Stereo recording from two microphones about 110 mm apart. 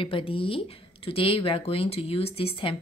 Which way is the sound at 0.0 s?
55° left (ahead or behind).